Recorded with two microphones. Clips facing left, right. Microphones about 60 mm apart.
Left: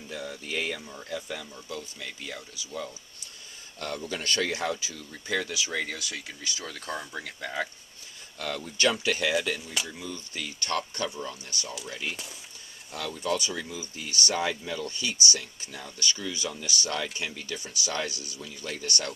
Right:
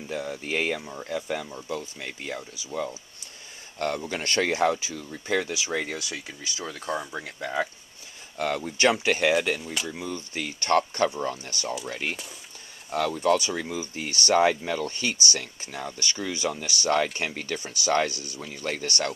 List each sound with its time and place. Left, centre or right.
0.1 s speech: right
0.4 s speech: right
4.0 s speech: right; by 7.6 s centre
8.4 s speech: right
13.4 s speech: right